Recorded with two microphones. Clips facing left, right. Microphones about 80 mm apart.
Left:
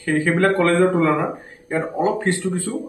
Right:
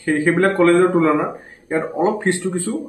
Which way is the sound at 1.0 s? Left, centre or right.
Centre.